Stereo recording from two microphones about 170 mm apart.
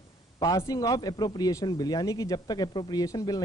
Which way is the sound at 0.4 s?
20° left (ahead or behind).